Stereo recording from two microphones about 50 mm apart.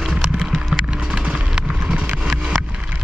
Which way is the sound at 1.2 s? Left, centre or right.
Right.